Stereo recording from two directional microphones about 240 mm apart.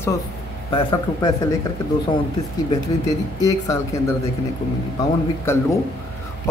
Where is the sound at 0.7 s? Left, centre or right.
Left.